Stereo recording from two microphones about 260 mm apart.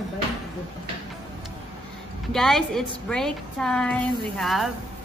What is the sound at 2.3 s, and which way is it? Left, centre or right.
A woman's voice, centre.